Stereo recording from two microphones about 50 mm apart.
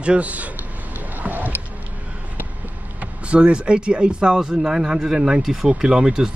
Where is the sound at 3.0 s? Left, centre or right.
Right.